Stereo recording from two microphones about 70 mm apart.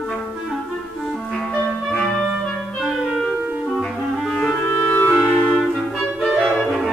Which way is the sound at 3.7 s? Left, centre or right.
Centre.